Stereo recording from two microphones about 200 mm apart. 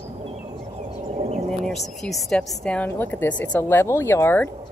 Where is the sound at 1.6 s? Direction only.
Centre (ahead or behind).